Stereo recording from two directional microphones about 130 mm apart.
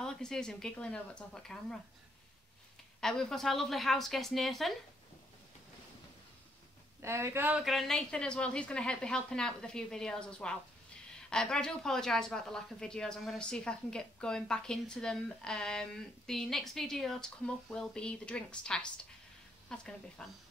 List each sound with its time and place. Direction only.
0.0 s a woman's voice: 5° left (ahead or behind)
3.0 s a woman's voice: 5° left (ahead or behind)
7.0 s speech: 20° right (ahead or behind)
7.6 s a woman's voice: centre (ahead or behind)